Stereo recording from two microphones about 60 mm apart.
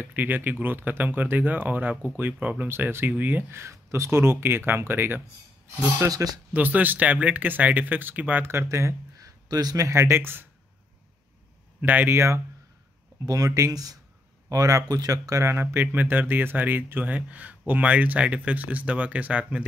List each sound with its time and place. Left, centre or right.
0.0 s speech: right
3.5 s speech: right
6.0 s speech: right
6.5 s speech: right
8.5 s speech: right
9.5 s speech: right
9.9 s speech: right
11.8 s speech: right
12.1 s speech: right
13.6 s speech: right
14.5 s speech: right
15.5 s speech: right